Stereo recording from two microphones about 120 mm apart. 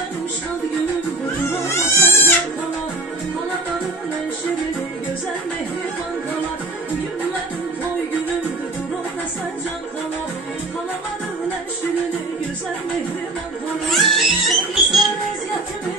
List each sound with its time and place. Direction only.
1.6 s goat: 20° left (ahead or behind)
13.8 s music: centre (ahead or behind)